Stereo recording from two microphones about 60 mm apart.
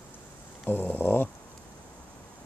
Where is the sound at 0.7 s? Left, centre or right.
Left.